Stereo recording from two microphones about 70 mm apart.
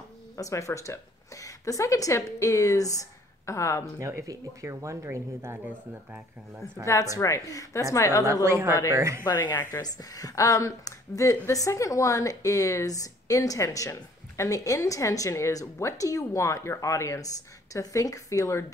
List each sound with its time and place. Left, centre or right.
0.4 s a woman's voice: left
4.0 s speech: right
5.0 s speech: right
6.8 s speech: left
8.5 s speech: right
9.2 s speech: left
9.8 s speech: left